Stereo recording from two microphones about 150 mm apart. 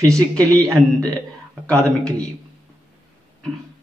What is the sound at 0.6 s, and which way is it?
A man's voice, 5° left (ahead or behind).